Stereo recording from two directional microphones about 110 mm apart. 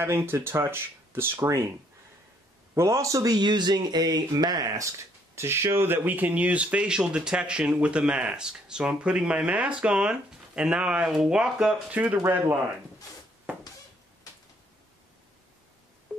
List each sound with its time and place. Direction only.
0.0 s speech: 20° right (ahead or behind)
2.7 s speech: 25° right (ahead or behind)
16.1 s telephone dialing: 10° left (ahead or behind)